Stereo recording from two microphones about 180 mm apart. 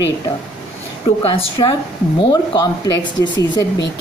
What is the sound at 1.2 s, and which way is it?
Speech, 30° left (ahead or behind).